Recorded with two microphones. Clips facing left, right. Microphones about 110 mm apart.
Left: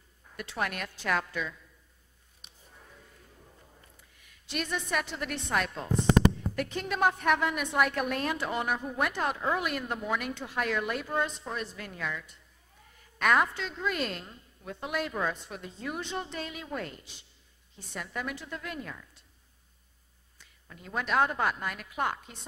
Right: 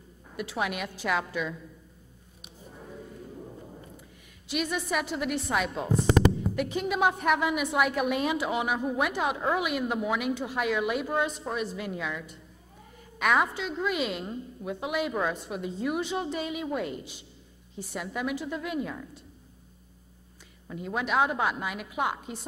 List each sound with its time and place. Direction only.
0.4 s speech: 5° right (ahead or behind)
2.7 s a sound: 25° right (ahead or behind)
4.5 s speech: 5° right (ahead or behind)
20.6 s speech: 10° right (ahead or behind)